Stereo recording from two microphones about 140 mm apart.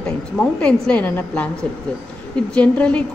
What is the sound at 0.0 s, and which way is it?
A woman's voice, 5° left (ahead or behind).